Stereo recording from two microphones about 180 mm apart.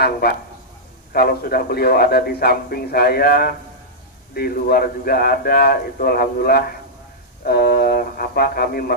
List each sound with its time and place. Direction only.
0.0 s a man's voice: 60° left (ahead or behind)